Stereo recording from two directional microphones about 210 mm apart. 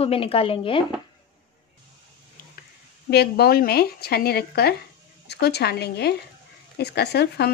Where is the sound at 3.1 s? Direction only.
50° left (ahead or behind).